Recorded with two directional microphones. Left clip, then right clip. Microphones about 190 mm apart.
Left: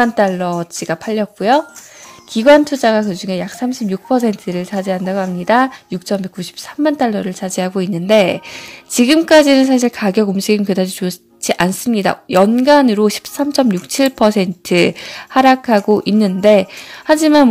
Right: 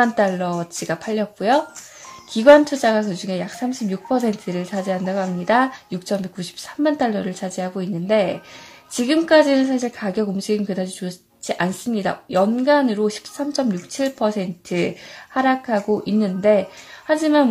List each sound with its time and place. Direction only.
0.0 s a woman's voice: 30° left (ahead or behind)